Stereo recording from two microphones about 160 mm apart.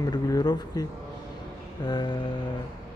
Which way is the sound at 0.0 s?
25° left (ahead or behind).